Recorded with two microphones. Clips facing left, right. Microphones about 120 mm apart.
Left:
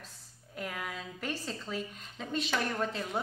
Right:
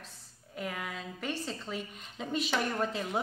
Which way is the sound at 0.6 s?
Centre (ahead or behind).